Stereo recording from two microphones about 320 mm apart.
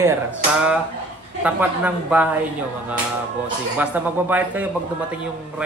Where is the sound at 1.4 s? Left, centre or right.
Centre.